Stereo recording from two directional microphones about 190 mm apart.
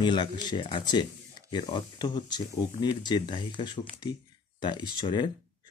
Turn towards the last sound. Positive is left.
turn(degrees=20)  # may be behind; listen again after turning